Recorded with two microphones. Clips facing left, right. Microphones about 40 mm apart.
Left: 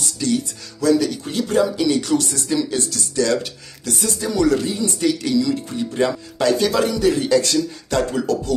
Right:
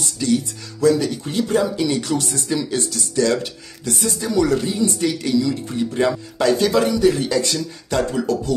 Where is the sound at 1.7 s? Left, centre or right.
Centre.